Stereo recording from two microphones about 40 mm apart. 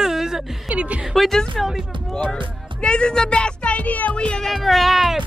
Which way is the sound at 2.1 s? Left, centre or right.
Centre.